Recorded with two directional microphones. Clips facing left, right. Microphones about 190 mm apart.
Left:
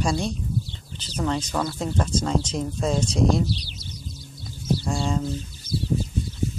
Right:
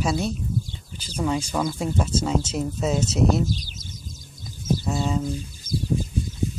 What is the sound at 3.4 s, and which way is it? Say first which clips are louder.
Speech: even; 45° right (ahead or behind).